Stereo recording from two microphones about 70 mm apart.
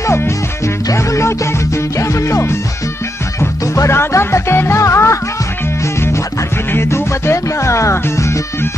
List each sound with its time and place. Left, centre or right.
0.0 s music: left
6.7 s music: left